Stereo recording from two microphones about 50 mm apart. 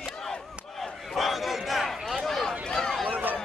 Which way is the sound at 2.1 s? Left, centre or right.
Centre.